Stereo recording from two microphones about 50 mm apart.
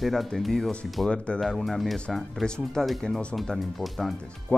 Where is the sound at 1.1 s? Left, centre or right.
Centre.